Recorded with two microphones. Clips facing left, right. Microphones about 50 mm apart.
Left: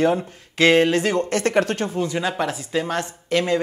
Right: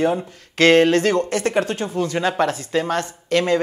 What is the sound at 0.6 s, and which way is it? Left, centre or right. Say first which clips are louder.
Speech: right 2 dB; right.